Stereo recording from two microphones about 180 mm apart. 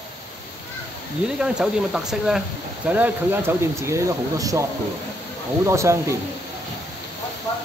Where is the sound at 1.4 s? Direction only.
5° right (ahead or behind).